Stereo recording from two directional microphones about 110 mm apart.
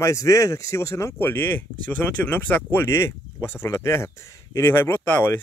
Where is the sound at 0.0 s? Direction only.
30° left (ahead or behind).